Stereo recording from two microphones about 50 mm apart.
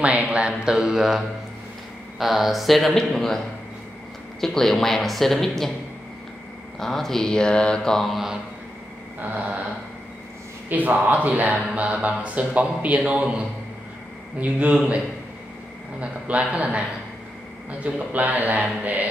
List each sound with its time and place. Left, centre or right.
0.0 s speech: right; by 5.7 s centre
6.8 s speech: centre
8.1 s speech: centre
10.7 s speech: right
14.4 s speech: right
16.0 s speech: right